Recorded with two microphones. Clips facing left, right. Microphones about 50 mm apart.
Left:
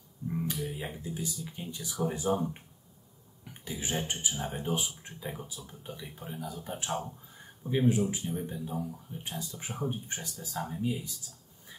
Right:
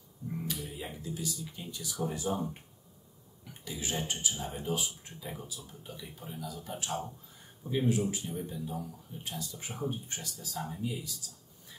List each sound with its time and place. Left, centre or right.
0.5 s speech: left
2.3 s speech: centre
3.6 s speech: left